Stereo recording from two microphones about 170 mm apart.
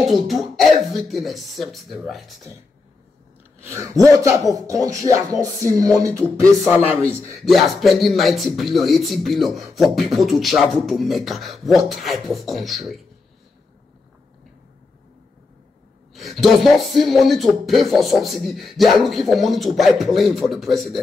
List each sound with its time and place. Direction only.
0.3 s speech: centre (ahead or behind)
3.6 s music: 20° right (ahead or behind)
6.4 s speech: 15° right (ahead or behind)
7.4 s speech: centre (ahead or behind)
16.2 s speech: centre (ahead or behind)